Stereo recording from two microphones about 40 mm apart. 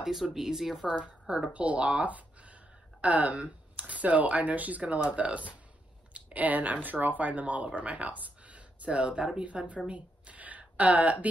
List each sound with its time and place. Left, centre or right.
0.0 s speech: centre
0.8 s a woman's voice: right
9.8 s a sound: right
10.6 s speech: right